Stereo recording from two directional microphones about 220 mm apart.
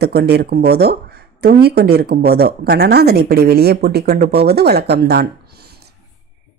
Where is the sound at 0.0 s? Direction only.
45° right (ahead or behind).